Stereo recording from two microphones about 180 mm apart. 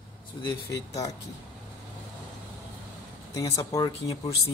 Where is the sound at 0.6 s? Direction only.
20° left (ahead or behind).